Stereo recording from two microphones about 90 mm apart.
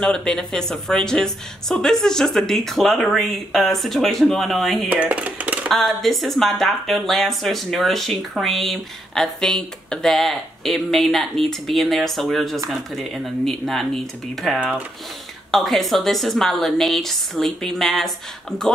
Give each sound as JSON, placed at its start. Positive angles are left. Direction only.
{"t": 0.0, "sound": "speech", "side_deg": 10}
{"t": 4.8, "sound": "a sound", "side_deg": -15}
{"t": 5.7, "sound": "speech", "side_deg": 5}